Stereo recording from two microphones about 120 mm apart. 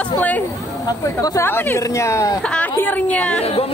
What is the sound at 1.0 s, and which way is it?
Speech, 25° left (ahead or behind).